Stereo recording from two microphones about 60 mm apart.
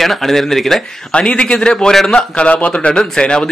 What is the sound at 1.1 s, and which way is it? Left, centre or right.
Speech, centre.